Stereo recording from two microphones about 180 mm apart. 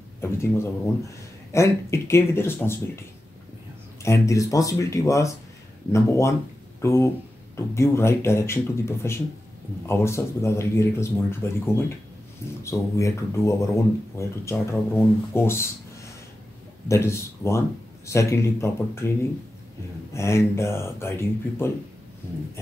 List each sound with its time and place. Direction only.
0.2 s speech: 15° left (ahead or behind)
16.8 s speech: 15° left (ahead or behind)
20.2 s speech: 15° left (ahead or behind)